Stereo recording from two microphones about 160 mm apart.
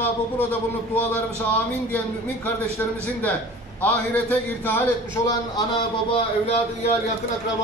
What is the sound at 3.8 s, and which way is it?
Speech, 10° left (ahead or behind).